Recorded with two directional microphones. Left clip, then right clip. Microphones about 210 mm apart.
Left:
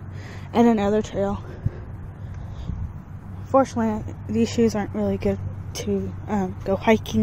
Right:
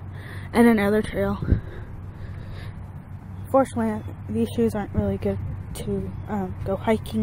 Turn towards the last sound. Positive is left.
turn(degrees=15)  # may be behind; listen again after turning